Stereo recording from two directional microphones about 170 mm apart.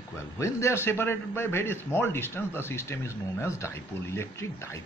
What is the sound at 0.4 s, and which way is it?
Speech, 15° left (ahead or behind).